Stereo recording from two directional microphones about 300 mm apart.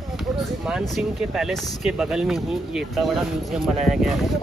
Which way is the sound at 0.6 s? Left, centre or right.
Centre.